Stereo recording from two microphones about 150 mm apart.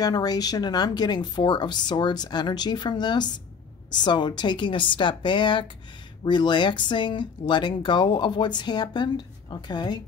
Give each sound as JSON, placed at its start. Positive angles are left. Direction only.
{"t": 0.0, "sound": "speech", "side_deg": 25}